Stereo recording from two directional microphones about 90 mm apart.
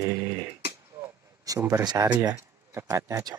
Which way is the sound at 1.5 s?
40° right (ahead or behind).